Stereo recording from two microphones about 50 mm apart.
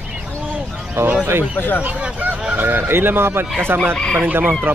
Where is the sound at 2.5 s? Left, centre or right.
Right.